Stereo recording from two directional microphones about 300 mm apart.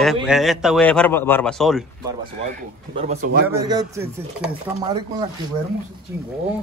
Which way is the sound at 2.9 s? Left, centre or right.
Right.